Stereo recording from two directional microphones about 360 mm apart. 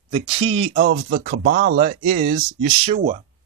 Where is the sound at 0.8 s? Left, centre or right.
Right.